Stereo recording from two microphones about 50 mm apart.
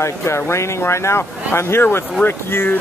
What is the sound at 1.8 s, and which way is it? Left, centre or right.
Speech, left.